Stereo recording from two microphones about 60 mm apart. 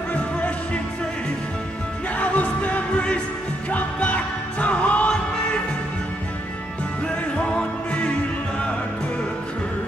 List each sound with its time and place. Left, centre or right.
2.1 s music: left
7.3 s music: centre